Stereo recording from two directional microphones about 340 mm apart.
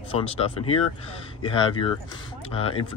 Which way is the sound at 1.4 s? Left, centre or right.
Centre.